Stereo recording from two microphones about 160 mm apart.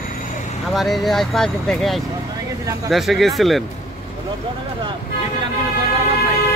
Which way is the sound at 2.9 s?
Centre (ahead or behind).